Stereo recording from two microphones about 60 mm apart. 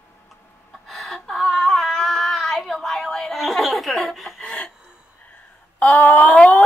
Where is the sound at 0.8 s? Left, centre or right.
Centre.